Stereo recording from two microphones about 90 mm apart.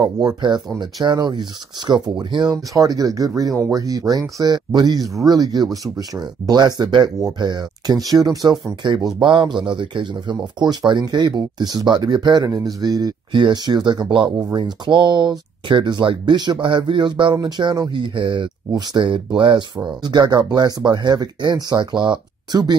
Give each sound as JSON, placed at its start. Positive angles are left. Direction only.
{"t": 0.4, "sound": "speech", "side_deg": -55}
{"t": 8.8, "sound": "speech", "side_deg": -60}
{"t": 12.4, "sound": "speech", "side_deg": -40}
{"t": 18.1, "sound": "speech", "side_deg": -65}
{"t": 20.0, "sound": "speech", "side_deg": -55}